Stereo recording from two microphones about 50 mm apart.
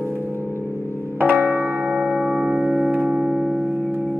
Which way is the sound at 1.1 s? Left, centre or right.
Right.